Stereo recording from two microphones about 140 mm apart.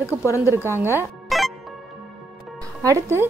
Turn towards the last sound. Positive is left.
turn(degrees=-20)  # may be behind; listen again after turning